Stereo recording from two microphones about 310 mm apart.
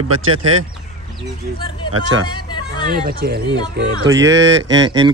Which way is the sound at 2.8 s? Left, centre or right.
Right.